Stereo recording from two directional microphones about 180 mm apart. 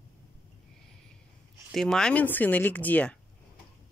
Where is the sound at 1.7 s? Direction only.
5° left (ahead or behind).